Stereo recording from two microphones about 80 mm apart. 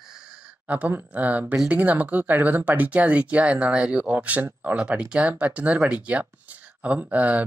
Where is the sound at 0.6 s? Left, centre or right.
Right.